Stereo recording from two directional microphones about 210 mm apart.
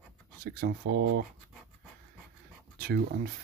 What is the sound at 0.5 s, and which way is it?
Speech, 50° right (ahead or behind).